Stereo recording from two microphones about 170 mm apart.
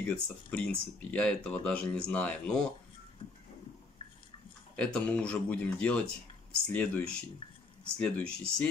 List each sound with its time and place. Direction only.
0.0 s speech: 10° left (ahead or behind)
3.2 s vehicle: 35° left (ahead or behind)
4.7 s speech: 5° left (ahead or behind)